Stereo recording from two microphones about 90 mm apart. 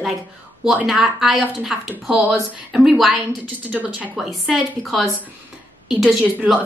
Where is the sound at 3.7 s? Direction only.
15° right (ahead or behind).